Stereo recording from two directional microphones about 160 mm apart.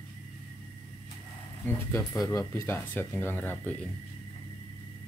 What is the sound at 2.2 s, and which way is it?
Speech, 20° left (ahead or behind).